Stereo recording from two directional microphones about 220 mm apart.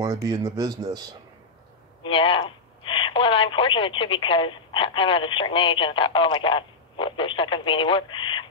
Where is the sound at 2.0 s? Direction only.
25° left (ahead or behind).